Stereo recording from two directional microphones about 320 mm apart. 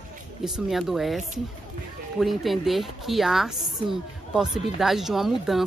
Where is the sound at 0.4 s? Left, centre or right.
Centre.